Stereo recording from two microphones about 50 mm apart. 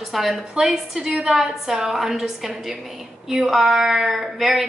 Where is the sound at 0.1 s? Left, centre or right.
Centre.